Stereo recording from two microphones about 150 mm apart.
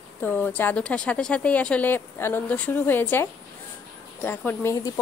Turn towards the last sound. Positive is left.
turn(degrees=25)  # may be behind; listen again after turning